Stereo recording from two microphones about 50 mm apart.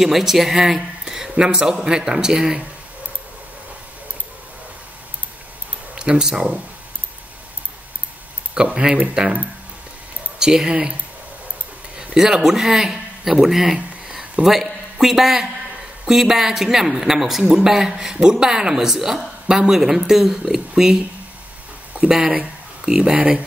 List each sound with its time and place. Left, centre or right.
0.0 s speech: centre
5.9 s speech: centre
8.5 s speech: centre
10.4 s speech: centre
12.0 s speech: centre
13.7 s a sound: centre
14.4 s speech: centre
22.1 s speech: centre